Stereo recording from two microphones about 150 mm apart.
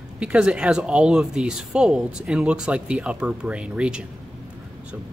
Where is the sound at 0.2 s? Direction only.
5° right (ahead or behind).